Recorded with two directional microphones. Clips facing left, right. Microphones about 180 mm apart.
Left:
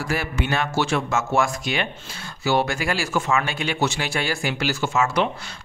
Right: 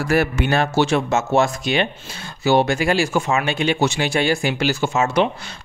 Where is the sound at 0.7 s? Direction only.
20° right (ahead or behind).